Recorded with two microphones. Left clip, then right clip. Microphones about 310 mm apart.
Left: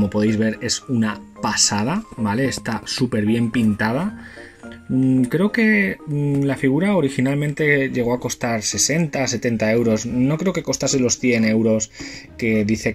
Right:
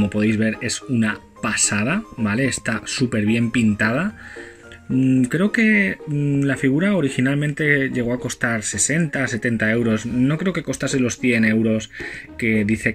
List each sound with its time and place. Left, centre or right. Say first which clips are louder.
0.1 s speech: left 1 dB; left
5.2 s speech: even; centre